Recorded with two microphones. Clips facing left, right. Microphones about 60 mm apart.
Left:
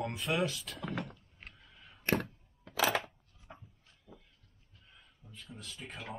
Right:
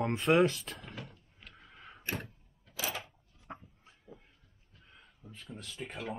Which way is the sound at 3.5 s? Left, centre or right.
Right.